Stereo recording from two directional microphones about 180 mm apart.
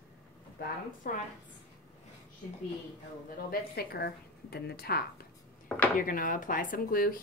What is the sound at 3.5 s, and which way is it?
A woman's voice, 60° left (ahead or behind).